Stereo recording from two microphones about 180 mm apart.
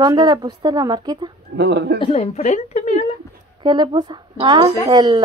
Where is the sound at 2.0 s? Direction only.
35° left (ahead or behind).